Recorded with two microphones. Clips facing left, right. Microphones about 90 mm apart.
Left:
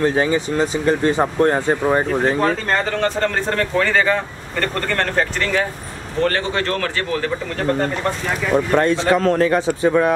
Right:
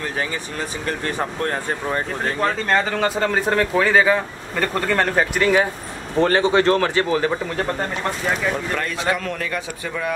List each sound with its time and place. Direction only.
0.0 s speech: 25° left (ahead or behind)
2.4 s speech: centre (ahead or behind); by 7.2 s 20° right (ahead or behind)
8.5 s a man's voice: 30° left (ahead or behind)